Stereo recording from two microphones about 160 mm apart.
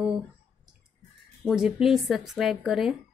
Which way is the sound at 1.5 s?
5° right (ahead or behind).